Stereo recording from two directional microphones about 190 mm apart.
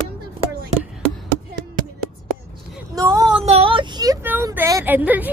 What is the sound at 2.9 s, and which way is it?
Child singing, 20° right (ahead or behind).